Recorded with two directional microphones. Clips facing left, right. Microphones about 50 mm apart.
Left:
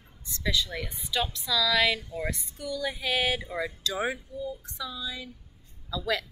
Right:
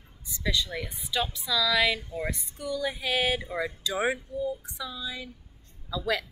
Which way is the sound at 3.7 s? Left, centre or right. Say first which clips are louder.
Right 4 dB; centre.